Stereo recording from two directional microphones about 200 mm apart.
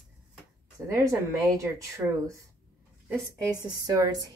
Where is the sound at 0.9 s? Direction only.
15° right (ahead or behind).